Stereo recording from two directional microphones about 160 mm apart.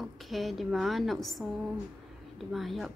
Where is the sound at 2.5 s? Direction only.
Centre (ahead or behind).